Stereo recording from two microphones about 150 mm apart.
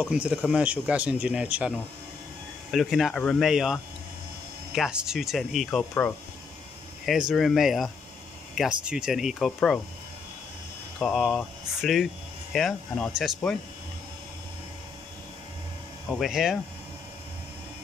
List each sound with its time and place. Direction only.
0.0 s speech: 5° right (ahead or behind)
2.7 s speech: centre (ahead or behind)
11.0 s speech: centre (ahead or behind)
16.1 s speech: centre (ahead or behind)